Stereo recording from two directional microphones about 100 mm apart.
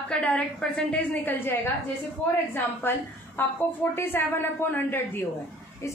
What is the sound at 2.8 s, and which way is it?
A woman's voice, 20° left (ahead or behind).